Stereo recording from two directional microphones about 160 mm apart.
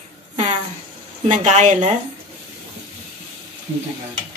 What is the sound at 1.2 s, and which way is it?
Speech, 45° right (ahead or behind).